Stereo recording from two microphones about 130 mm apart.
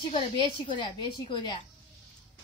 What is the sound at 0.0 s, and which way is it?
A woman's voice, 40° left (ahead or behind).